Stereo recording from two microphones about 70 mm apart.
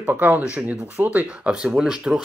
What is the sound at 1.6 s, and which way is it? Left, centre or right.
Speech, centre.